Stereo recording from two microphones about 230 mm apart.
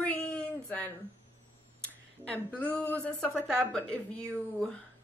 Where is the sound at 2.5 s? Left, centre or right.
Centre.